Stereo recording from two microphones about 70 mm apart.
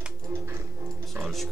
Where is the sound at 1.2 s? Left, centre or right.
Centre.